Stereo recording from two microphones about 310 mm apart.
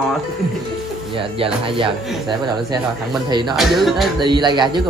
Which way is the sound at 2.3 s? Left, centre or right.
Centre.